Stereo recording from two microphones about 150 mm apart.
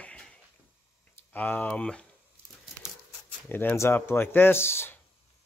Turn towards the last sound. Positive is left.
turn(degrees=15)  # may be behind; listen again after turning